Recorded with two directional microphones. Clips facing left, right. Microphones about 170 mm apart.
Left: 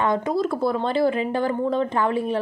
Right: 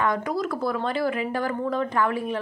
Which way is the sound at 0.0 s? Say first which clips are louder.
Left 3 dB; 25° left (ahead or behind).